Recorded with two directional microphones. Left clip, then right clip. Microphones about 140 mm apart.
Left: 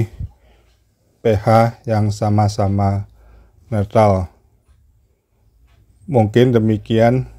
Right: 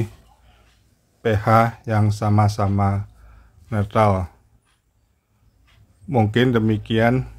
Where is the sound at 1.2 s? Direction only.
25° left (ahead or behind).